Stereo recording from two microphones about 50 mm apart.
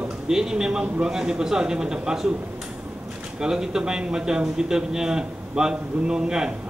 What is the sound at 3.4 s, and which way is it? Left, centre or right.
A man's voice, centre.